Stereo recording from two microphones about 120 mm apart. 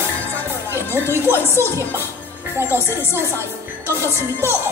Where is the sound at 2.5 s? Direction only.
20° right (ahead or behind).